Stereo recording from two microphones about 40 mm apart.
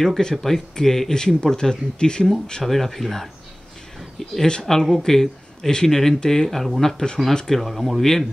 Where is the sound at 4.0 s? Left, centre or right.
Centre.